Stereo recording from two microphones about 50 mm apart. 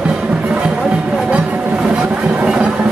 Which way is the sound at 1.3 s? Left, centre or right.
Right.